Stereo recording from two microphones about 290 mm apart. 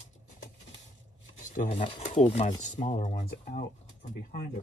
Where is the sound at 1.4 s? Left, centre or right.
Left.